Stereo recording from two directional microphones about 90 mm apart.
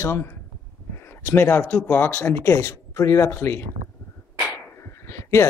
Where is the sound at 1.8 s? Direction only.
20° left (ahead or behind).